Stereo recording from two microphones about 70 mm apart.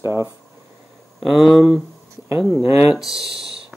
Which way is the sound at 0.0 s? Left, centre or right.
Right.